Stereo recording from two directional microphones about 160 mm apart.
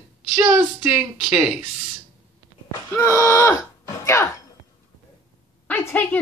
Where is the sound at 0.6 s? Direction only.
5° right (ahead or behind).